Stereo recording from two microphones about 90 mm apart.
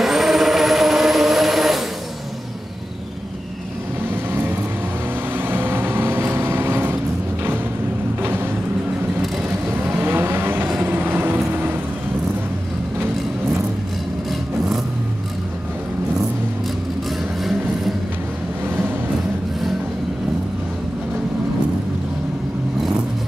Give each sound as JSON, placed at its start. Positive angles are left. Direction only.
{"t": 0.0, "sound": "vehicle", "side_deg": 0}
{"t": 4.3, "sound": "vehicle", "side_deg": -25}
{"t": 8.2, "sound": "vehicle", "side_deg": -25}
{"t": 9.7, "sound": "vehicle", "side_deg": -25}